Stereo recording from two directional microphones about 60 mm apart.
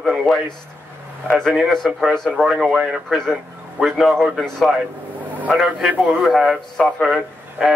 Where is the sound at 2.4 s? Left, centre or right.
Centre.